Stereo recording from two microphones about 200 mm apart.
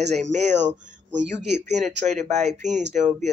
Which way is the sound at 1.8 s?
35° right (ahead or behind).